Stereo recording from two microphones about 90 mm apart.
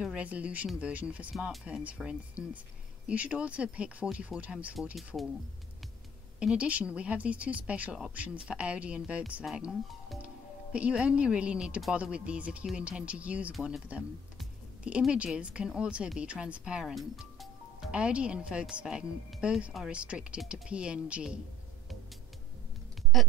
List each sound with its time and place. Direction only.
0.0 s speech: 15° right (ahead or behind)
4.9 s speech: centre (ahead or behind)
6.4 s speech: 15° right (ahead or behind)
10.2 s speech: 15° right (ahead or behind)
23.1 s speech: centre (ahead or behind)